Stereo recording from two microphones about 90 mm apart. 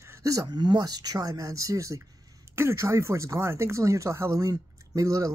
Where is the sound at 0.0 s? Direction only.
35° right (ahead or behind).